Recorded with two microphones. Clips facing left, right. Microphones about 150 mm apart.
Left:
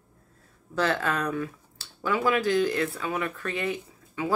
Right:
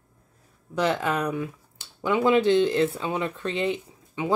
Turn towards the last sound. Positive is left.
turn(degrees=-20)  # may be behind; listen again after turning